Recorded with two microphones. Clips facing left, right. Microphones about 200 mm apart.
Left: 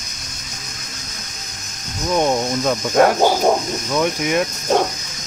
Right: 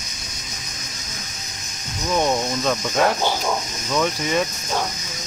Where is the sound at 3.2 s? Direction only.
45° left (ahead or behind).